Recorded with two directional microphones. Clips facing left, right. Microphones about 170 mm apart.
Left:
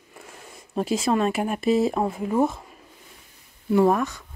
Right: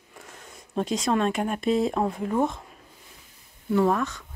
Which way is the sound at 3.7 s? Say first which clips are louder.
Left 3 dB; 15° left (ahead or behind).